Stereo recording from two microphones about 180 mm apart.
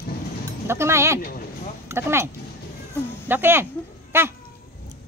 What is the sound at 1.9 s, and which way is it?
Speech, 15° right (ahead or behind).